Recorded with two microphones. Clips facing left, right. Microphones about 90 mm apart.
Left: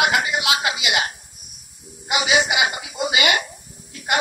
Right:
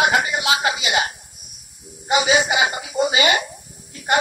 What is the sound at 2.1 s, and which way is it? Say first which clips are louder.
A man's voice: right 2 dB; 35° right (ahead or behind).